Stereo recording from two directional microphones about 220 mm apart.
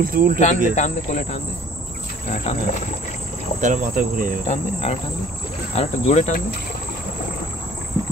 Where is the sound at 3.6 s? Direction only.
35° right (ahead or behind).